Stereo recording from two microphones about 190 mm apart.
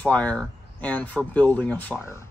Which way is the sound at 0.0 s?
5° left (ahead or behind).